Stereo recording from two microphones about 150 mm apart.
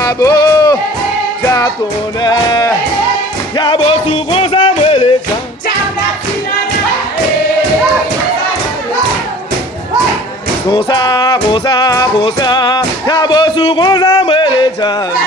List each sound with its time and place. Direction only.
0.0 s a sound: 25° left (ahead or behind)
2.2 s music: 30° left (ahead or behind)
10.7 s music: 30° left (ahead or behind)
12.4 s speech: 30° left (ahead or behind)
14.2 s music: 30° left (ahead or behind)